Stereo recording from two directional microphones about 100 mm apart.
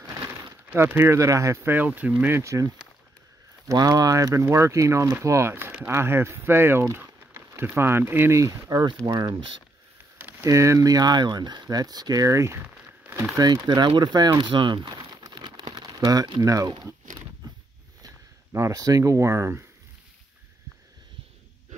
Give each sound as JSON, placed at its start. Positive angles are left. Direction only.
{"t": 0.7, "sound": "speech", "side_deg": -20}
{"t": 2.4, "sound": "speech", "side_deg": -30}
{"t": 10.4, "sound": "speech", "side_deg": -30}
{"t": 13.4, "sound": "speech", "side_deg": -45}
{"t": 18.0, "sound": "speech", "side_deg": -35}